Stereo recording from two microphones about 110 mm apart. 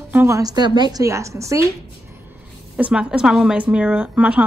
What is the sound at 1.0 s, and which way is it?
Speech, 30° right (ahead or behind).